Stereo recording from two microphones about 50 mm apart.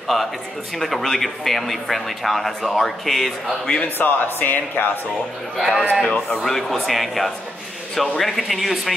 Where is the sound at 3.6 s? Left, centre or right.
Centre.